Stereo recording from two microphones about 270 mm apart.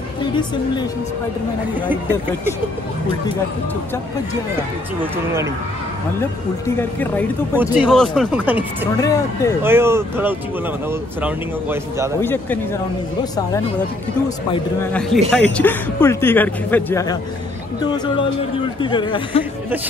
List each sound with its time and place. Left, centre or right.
0.2 s a woman's voice: centre
1.9 s speech: centre
5.1 s speech: centre
6.8 s speech: centre
7.5 s speech: centre
8.9 s speech: centre
9.6 s speech: centre
12.2 s speech: centre
14.5 s speech: centre